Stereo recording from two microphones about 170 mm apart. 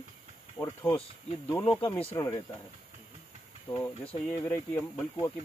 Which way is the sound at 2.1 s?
20° left (ahead or behind).